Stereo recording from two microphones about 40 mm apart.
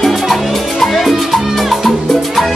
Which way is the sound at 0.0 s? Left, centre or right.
Centre.